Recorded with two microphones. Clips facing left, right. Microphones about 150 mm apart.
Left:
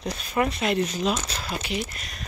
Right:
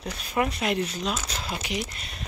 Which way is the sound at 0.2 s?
10° right (ahead or behind).